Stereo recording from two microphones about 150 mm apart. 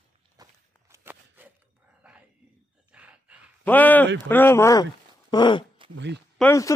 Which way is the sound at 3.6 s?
10° left (ahead or behind).